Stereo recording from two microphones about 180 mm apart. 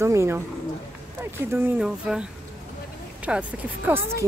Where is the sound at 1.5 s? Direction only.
10° right (ahead or behind).